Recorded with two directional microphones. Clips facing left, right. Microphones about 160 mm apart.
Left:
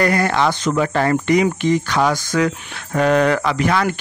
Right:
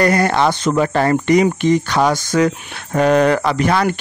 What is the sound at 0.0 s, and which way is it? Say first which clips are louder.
Speech: right 2 dB; 35° right (ahead or behind).